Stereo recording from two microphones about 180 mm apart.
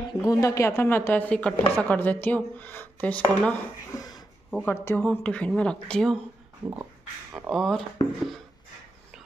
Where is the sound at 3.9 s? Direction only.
20° left (ahead or behind).